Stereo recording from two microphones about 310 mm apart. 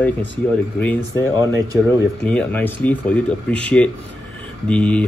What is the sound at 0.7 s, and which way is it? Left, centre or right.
Speech, centre.